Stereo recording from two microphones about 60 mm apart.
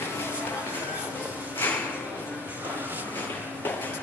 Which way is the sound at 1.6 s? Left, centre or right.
Left.